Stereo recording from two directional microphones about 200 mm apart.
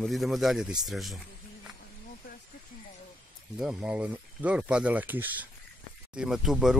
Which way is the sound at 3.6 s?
5° right (ahead or behind).